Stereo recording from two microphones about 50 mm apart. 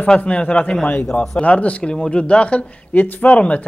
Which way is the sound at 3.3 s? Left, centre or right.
Left.